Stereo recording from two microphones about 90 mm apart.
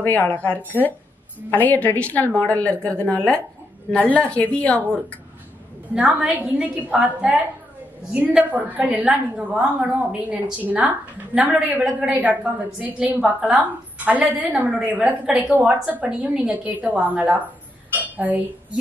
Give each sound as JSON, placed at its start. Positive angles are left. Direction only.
{"t": 0.0, "sound": "a woman's voice", "side_deg": 20}
{"t": 5.9, "sound": "a woman's voice", "side_deg": -15}